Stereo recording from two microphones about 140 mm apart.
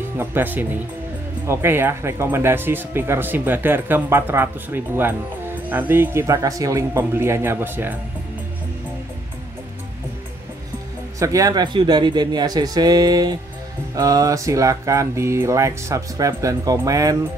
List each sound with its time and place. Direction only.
0.2 s speech: 15° right (ahead or behind)
11.1 s speech: 25° right (ahead or behind)